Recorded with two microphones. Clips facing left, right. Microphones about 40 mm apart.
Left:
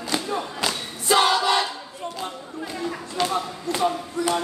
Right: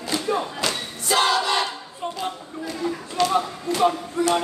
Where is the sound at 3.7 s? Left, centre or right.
Right.